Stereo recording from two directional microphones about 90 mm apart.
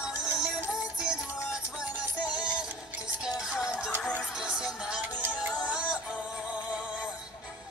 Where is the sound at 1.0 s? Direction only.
10° right (ahead or behind).